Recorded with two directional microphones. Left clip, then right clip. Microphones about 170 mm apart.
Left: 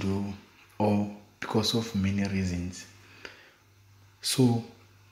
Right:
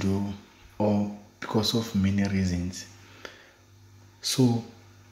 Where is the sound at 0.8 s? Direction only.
15° left (ahead or behind); by 3.3 s 5° right (ahead or behind).